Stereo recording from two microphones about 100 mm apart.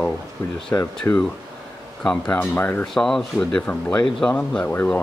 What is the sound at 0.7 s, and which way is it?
Speech, 25° left (ahead or behind).